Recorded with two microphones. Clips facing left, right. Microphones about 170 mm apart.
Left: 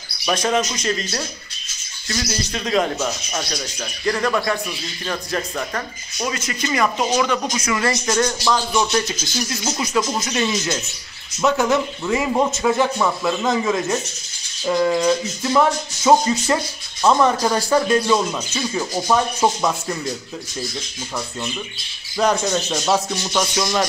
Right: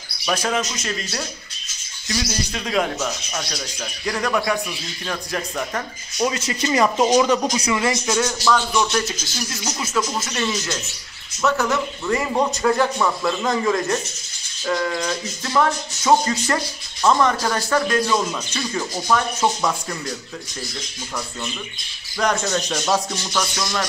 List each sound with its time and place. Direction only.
0.3 s speech: 5° right (ahead or behind)
2.1 s speech: 15° right (ahead or behind)
2.5 s speech: 5° right (ahead or behind)
6.3 s speech: 35° right (ahead or behind)
7.3 s speech: 15° right (ahead or behind)
8.5 s speech: 15° left (ahead or behind)
12.4 s speech: 5° left (ahead or behind)
14.7 s music: 20° left (ahead or behind)
15.5 s speech: 10° left (ahead or behind)
22.3 s speech: 15° left (ahead or behind)
22.7 s speech: 5° left (ahead or behind)
23.3 s music: 20° left (ahead or behind)